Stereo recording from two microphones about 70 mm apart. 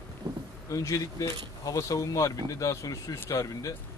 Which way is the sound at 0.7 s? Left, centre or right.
Left.